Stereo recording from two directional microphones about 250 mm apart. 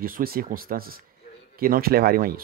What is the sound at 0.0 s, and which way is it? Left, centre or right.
Speech, right.